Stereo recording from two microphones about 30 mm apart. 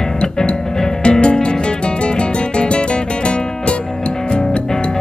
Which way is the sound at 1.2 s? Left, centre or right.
Left.